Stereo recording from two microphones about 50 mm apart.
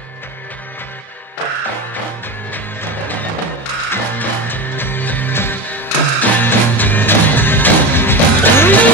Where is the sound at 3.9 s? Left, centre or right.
Left.